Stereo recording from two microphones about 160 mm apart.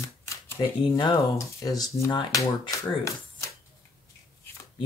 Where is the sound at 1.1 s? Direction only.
20° left (ahead or behind).